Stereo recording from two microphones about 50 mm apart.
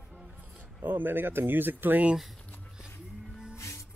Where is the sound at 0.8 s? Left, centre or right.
Right.